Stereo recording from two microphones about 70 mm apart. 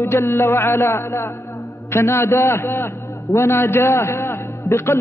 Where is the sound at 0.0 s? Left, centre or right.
Left.